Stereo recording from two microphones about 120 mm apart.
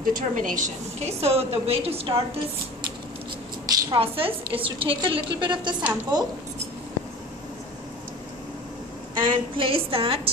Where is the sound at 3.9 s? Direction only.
50° right (ahead or behind).